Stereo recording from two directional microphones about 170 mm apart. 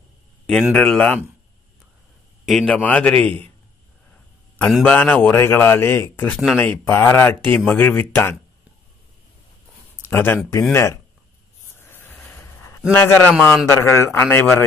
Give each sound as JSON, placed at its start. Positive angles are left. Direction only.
{"t": 0.5, "sound": "speech", "side_deg": 5}
{"t": 2.4, "sound": "a man's voice", "side_deg": 5}
{"t": 4.6, "sound": "a man's voice", "side_deg": 5}
{"t": 10.0, "sound": "a man's voice", "side_deg": 10}
{"t": 11.7, "sound": "a sound", "side_deg": 15}
{"t": 12.9, "sound": "a man's voice", "side_deg": 15}